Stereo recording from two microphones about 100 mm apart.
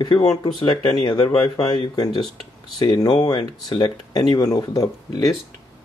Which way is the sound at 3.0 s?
45° left (ahead or behind).